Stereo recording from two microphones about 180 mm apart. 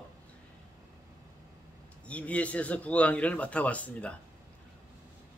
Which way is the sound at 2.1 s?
5° left (ahead or behind).